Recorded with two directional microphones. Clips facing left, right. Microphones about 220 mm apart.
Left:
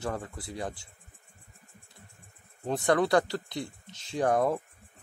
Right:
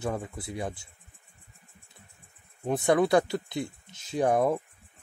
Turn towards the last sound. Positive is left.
turn(degrees=-15)  # may be behind; listen again after turning